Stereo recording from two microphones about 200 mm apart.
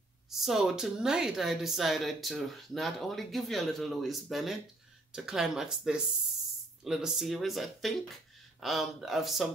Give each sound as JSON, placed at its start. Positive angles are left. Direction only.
{"t": 0.3, "sound": "speech", "side_deg": 0}